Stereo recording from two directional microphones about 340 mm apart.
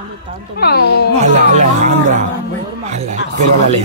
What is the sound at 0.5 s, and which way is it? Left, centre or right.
Speech, left.